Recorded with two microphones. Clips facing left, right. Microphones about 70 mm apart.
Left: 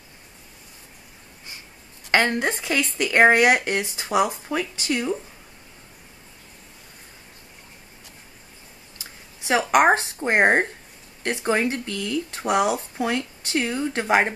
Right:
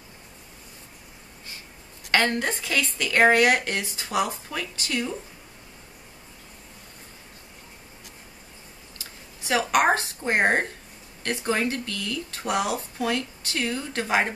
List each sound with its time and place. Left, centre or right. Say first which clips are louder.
2.0 s speech: left 2 dB; left
8.9 s speech: left 1 dB; left